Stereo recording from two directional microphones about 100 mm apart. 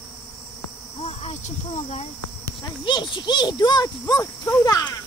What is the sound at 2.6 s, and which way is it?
A child's voice, 50° left (ahead or behind).